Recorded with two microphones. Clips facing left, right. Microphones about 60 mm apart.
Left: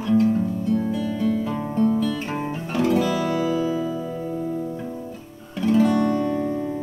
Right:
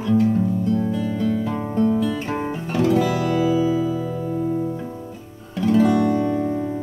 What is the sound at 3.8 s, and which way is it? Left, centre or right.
Music, right.